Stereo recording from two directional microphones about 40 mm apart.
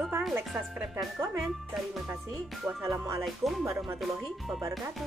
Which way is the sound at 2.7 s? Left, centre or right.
Right.